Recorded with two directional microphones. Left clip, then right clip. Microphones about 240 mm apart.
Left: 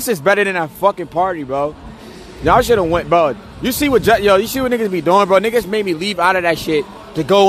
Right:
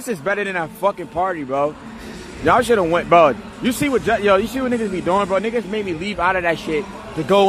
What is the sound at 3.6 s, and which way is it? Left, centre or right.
A man's voice, centre.